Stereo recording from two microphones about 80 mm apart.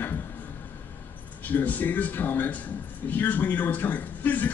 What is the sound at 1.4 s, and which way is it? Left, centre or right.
A man's voice, left.